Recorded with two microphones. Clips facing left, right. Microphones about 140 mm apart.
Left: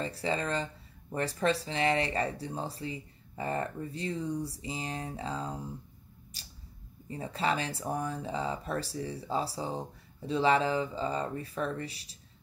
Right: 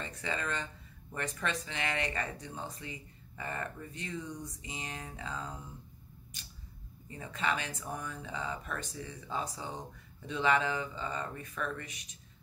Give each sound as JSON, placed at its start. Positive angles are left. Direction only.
{"t": 0.0, "sound": "speech", "side_deg": 35}
{"t": 6.3, "sound": "camera", "side_deg": 35}
{"t": 7.1, "sound": "speech", "side_deg": 30}